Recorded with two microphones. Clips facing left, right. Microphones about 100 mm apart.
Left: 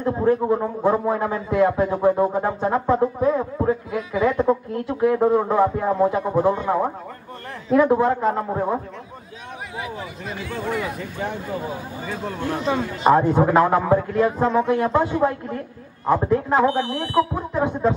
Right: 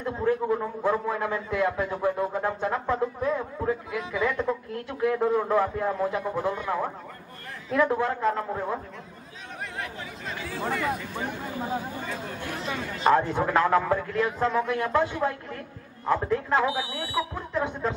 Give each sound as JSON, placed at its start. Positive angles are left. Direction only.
{"t": 0.0, "sound": "a man's voice", "side_deg": 30}
{"t": 2.7, "sound": "music", "side_deg": 20}
{"t": 3.2, "sound": "a sound", "side_deg": 30}
{"t": 4.3, "sound": "a man's voice", "side_deg": 30}
{"t": 7.8, "sound": "speech", "side_deg": 20}
{"t": 9.8, "sound": "speech", "side_deg": 5}
{"t": 12.4, "sound": "speech", "side_deg": 35}
{"t": 13.0, "sound": "a man's voice", "side_deg": 15}
{"t": 14.2, "sound": "speech", "side_deg": 30}
{"t": 16.1, "sound": "a man's voice", "side_deg": 15}
{"t": 17.0, "sound": "music", "side_deg": 50}
{"t": 17.3, "sound": "speech", "side_deg": 20}